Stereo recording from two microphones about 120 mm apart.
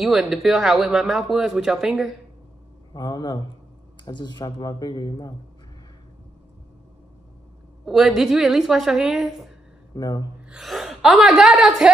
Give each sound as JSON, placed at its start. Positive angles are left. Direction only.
{"t": 0.0, "sound": "speech", "side_deg": 0}
{"t": 2.9, "sound": "speech", "side_deg": 35}
{"t": 7.8, "sound": "speech", "side_deg": 0}
{"t": 9.9, "sound": "speech", "side_deg": 35}
{"t": 10.5, "sound": "speech", "side_deg": 0}